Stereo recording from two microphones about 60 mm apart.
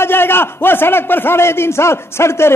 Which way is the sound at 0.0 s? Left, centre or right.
Left.